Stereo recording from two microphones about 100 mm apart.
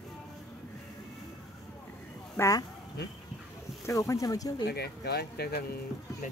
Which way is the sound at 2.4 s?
35° left (ahead or behind).